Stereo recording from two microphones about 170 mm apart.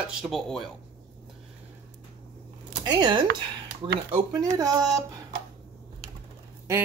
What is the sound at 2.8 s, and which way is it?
Speech, 25° right (ahead or behind).